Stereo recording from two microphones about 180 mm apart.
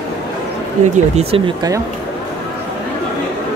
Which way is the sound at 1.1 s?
30° right (ahead or behind).